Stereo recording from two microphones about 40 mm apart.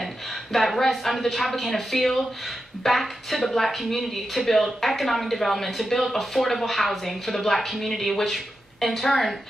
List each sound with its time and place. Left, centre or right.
0.0 s a woman's voice: centre